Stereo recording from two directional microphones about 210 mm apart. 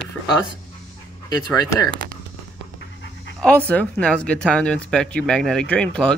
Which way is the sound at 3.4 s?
5° left (ahead or behind).